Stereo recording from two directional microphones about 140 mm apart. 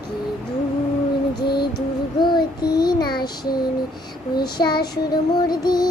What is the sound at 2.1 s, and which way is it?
Child singing, 30° left (ahead or behind).